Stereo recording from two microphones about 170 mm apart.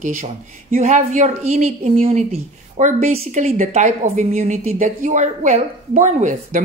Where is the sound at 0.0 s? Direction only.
50° right (ahead or behind).